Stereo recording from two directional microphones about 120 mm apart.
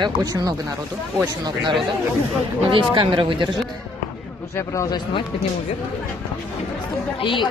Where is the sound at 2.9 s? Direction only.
45° right (ahead or behind).